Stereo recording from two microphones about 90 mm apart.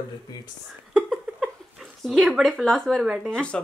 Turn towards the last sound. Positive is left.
turn(degrees=10)  # may be behind; listen again after turning